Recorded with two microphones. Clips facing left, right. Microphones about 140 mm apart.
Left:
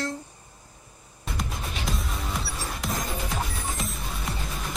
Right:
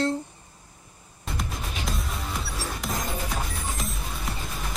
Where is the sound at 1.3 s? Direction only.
Centre (ahead or behind).